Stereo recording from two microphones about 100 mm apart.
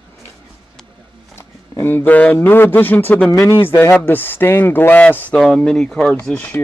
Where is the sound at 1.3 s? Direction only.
25° left (ahead or behind).